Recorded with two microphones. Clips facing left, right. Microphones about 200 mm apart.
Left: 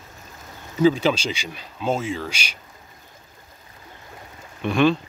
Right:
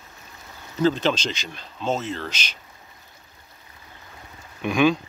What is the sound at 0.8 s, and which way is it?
Speech, 10° left (ahead or behind).